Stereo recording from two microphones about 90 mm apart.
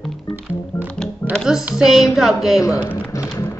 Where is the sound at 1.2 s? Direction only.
30° left (ahead or behind).